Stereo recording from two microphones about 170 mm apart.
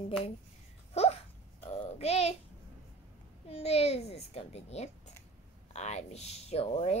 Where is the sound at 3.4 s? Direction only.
35° left (ahead or behind).